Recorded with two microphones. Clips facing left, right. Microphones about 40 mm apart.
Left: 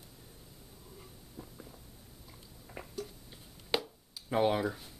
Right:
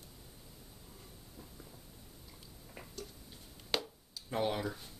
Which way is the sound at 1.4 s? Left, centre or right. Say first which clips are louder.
Left 6 dB; left.